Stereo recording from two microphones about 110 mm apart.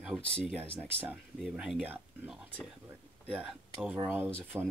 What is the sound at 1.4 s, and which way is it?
Speech, centre (ahead or behind).